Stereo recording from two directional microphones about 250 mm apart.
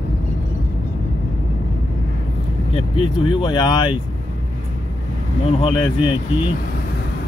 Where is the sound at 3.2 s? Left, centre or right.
Centre.